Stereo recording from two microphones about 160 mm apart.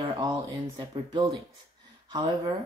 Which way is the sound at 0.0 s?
25° right (ahead or behind).